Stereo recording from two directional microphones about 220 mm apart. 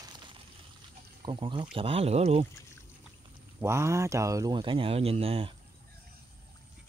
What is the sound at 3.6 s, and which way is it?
Speech, 10° right (ahead or behind).